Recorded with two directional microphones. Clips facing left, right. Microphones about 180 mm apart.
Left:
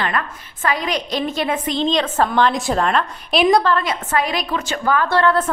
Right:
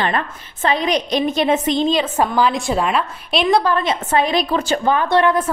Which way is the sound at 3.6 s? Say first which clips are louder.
Right 1 dB; 15° right (ahead or behind).